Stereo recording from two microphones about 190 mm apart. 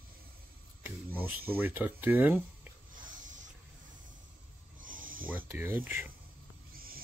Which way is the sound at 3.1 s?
40° right (ahead or behind).